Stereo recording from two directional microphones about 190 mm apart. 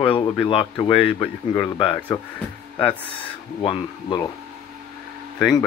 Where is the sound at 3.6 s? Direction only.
25° left (ahead or behind).